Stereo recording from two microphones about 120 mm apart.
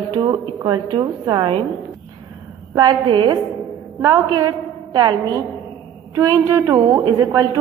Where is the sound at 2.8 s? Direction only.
40° right (ahead or behind).